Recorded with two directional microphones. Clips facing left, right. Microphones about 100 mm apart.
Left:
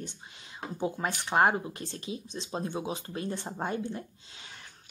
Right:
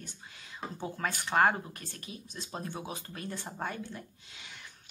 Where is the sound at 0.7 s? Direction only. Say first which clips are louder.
Left 5 dB; 15° left (ahead or behind).